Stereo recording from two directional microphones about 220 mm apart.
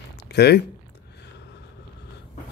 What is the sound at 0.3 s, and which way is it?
Speech, 50° left (ahead or behind).